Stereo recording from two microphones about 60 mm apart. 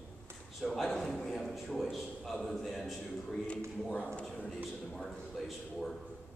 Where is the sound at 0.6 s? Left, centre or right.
Centre.